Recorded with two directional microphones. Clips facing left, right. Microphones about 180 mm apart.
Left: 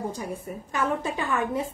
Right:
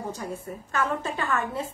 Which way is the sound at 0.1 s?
15° left (ahead or behind).